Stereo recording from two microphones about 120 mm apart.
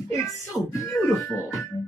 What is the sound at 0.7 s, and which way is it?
Music, 25° left (ahead or behind).